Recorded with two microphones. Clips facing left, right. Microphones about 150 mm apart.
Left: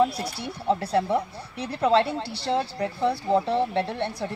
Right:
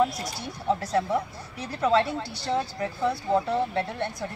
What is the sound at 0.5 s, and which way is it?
A woman's voice, 30° left (ahead or behind).